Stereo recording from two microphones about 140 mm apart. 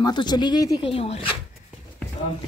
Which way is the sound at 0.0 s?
30° left (ahead or behind).